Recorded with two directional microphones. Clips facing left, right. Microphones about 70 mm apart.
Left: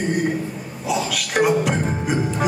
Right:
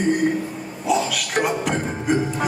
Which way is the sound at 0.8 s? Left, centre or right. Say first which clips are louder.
Right 2 dB; centre.